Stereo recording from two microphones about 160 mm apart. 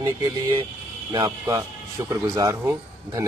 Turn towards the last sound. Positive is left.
turn(degrees=-20)  # may be behind; listen again after turning